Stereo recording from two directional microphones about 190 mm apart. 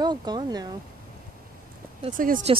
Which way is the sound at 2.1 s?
45° right (ahead or behind).